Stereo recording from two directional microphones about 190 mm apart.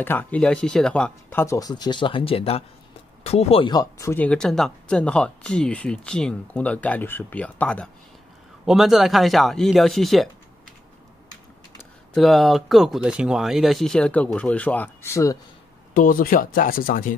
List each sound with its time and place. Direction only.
0.0 s speech: 10° left (ahead or behind)
12.1 s speech: centre (ahead or behind)
15.9 s speech: 45° left (ahead or behind)